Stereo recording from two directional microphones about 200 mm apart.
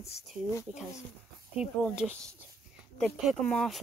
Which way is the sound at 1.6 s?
5° right (ahead or behind).